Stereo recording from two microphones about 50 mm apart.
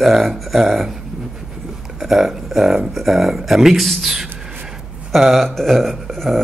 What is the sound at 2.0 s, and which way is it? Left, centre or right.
Speech, centre.